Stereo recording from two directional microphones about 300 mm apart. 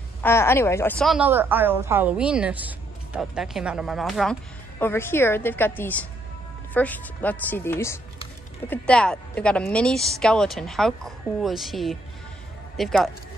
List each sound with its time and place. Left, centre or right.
0.2 s a woman's voice: centre